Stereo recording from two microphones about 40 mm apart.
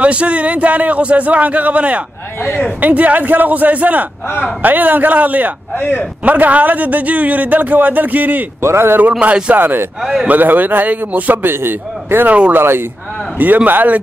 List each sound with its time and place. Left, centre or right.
0.0 s a man's voice: right
8.7 s speech: right
9.2 s speech: right
9.6 s speech: right
10.2 s a man's voice: right
11.4 s a man's voice: right
13.7 s a man's voice: right